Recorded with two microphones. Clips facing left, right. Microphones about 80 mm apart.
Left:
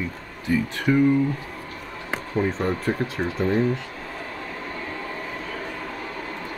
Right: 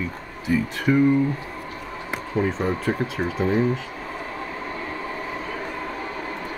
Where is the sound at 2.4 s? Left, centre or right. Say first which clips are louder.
Right 1 dB; centre.